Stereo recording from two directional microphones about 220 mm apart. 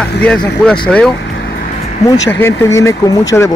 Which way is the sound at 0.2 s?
5° left (ahead or behind).